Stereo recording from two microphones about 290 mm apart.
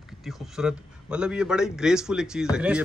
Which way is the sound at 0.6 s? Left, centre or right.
Centre.